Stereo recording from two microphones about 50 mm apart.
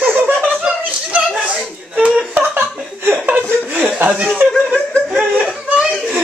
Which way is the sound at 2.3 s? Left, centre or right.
Right.